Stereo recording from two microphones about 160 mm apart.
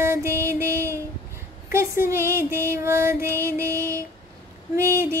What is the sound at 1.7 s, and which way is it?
Female singing, 15° right (ahead or behind).